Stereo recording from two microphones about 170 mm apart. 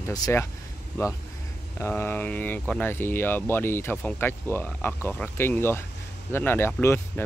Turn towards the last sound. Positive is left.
turn(degrees=15)  # may be behind; listen again after turning